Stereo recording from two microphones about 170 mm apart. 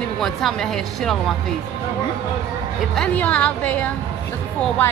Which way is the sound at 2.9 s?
5° left (ahead or behind).